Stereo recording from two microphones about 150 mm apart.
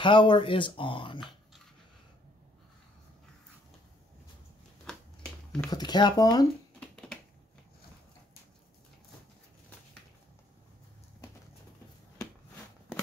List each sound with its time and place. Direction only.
0.0 s speech: 35° left (ahead or behind)
4.8 s finger snapping: 5° left (ahead or behind)
5.7 s speech: 30° left (ahead or behind)
6.8 s finger snapping: 5° left (ahead or behind)